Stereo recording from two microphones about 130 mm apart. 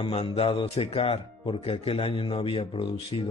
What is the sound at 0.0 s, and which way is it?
Speech, 45° left (ahead or behind).